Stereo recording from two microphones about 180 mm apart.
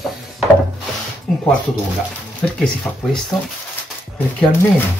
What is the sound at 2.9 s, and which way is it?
Speech, 5° left (ahead or behind).